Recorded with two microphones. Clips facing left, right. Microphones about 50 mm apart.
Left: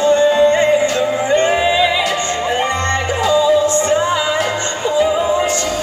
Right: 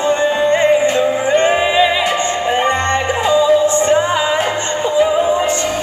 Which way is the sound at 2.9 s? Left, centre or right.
Right.